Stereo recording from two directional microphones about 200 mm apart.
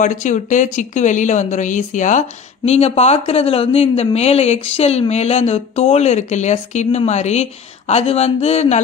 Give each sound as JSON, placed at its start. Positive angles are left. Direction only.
{"t": 0.0, "sound": "speech", "side_deg": 40}